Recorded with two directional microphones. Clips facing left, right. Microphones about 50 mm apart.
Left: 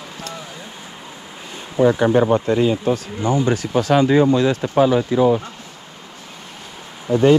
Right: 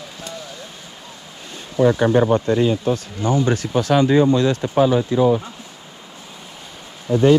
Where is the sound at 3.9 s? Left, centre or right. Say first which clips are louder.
Even; left.